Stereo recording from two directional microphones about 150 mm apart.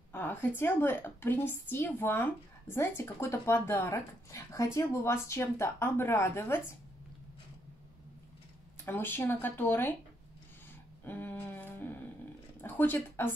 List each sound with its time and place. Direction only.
0.1 s a woman's voice: 15° left (ahead or behind)
8.8 s a woman's voice: 15° left (ahead or behind)
11.1 s a sound: 15° left (ahead or behind)
12.6 s speech: 15° left (ahead or behind)